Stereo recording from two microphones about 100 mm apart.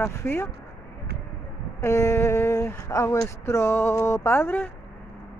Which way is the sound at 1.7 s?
30° left (ahead or behind).